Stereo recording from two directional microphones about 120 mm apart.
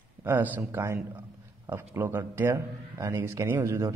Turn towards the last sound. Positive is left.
turn(degrees=-25)  # may be behind; listen again after turning